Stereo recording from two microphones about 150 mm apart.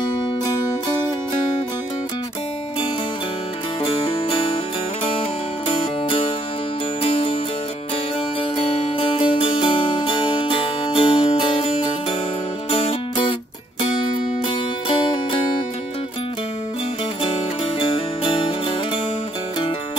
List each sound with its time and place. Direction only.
3.8 s music: 40° left (ahead or behind)
7.0 s music: 40° left (ahead or behind)
8.5 s music: 40° left (ahead or behind)
17.7 s music: 35° left (ahead or behind)